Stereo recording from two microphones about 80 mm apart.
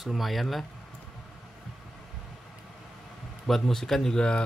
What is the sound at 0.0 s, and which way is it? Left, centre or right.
Speech, centre.